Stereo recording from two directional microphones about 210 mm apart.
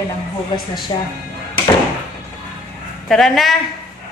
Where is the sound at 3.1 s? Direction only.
Centre (ahead or behind).